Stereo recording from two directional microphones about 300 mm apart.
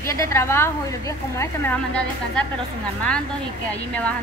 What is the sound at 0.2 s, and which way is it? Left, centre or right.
Speech, centre.